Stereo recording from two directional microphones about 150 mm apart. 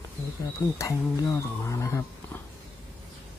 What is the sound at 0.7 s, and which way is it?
Speech, 20° left (ahead or behind).